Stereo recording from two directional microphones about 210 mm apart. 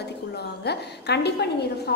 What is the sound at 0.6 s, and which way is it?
Speech, 50° left (ahead or behind).